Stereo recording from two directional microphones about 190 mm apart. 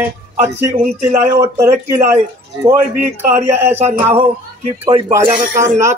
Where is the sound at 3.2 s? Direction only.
10° right (ahead or behind).